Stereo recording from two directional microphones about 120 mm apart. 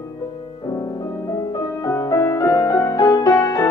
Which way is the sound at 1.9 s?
25° left (ahead or behind).